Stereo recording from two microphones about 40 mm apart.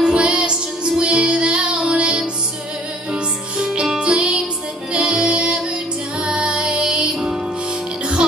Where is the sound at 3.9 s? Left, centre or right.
Right.